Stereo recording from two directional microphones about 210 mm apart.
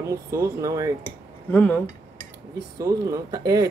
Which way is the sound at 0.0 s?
15° right (ahead or behind).